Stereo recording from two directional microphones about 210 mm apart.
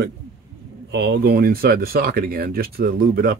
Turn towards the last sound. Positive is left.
turn(degrees=-45)  # may be behind; listen again after turning